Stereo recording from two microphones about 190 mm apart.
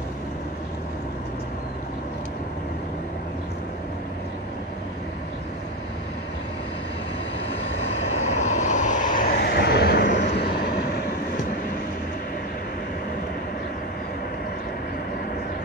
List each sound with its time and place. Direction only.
7.8 s vehicle: 35° left (ahead or behind); by 10.2 s 60° left (ahead or behind)